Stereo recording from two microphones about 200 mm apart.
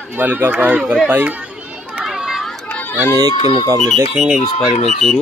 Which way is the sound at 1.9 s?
5° right (ahead or behind).